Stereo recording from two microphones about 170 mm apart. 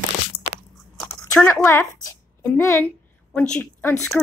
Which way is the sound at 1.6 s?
20° left (ahead or behind).